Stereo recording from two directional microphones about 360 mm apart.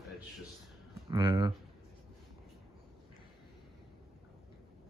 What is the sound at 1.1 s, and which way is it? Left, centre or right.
Speech, centre.